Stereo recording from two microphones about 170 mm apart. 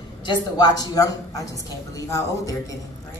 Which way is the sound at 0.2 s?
25° left (ahead or behind).